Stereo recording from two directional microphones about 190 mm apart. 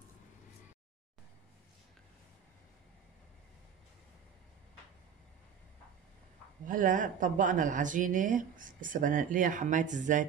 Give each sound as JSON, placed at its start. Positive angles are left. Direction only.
{"t": 6.6, "sound": "speech", "side_deg": -45}